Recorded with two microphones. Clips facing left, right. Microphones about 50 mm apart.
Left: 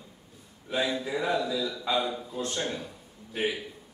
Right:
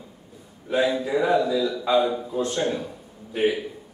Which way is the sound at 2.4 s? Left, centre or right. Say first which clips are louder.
Right 6 dB; centre.